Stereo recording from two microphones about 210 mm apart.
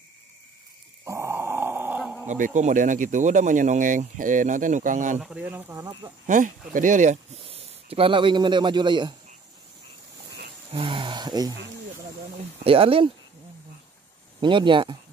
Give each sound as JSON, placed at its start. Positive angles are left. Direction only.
{"t": 1.0, "sound": "a sound", "side_deg": -15}
{"t": 2.2, "sound": "speech", "side_deg": -35}
{"t": 5.2, "sound": "speech", "side_deg": -5}
{"t": 6.2, "sound": "speech", "side_deg": -35}
{"t": 10.7, "sound": "speech", "side_deg": -25}
{"t": 12.6, "sound": "speech", "side_deg": -25}
{"t": 14.4, "sound": "speech", "side_deg": -20}